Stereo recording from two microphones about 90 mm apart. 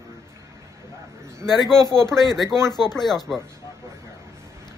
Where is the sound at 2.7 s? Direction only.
5° left (ahead or behind).